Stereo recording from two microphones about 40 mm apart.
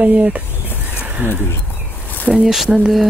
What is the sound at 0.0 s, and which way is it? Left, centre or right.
Speech, right.